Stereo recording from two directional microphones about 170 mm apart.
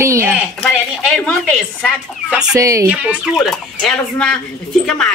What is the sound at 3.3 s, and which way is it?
Speech, 5° left (ahead or behind).